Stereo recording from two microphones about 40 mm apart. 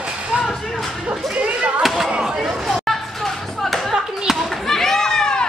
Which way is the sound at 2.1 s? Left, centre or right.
Centre.